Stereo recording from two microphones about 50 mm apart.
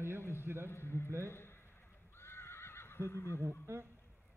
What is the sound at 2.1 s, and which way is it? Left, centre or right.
Neigh, left.